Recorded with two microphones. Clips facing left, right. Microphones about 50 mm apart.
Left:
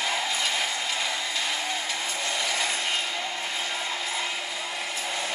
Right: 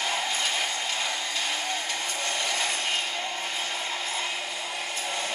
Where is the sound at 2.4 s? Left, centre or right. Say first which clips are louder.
Left 1 dB; left.